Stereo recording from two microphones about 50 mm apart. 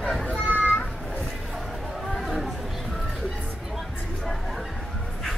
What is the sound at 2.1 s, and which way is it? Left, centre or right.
Chatter, centre.